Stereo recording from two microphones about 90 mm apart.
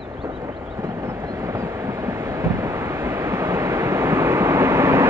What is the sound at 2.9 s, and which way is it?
Vehicle, 25° right (ahead or behind).